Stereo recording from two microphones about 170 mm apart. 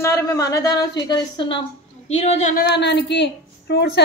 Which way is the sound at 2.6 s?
85° left.